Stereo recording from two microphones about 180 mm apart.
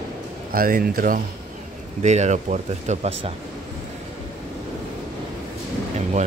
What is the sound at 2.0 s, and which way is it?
Speech, 40° right (ahead or behind).